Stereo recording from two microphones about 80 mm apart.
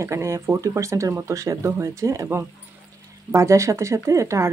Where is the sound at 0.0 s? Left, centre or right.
Right.